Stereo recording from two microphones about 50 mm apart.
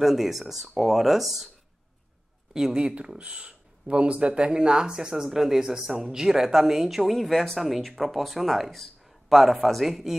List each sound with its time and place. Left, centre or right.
0.0 s speech: centre
2.5 s speech: centre